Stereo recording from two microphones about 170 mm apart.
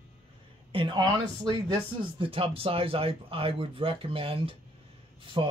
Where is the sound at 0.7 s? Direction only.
30° right (ahead or behind).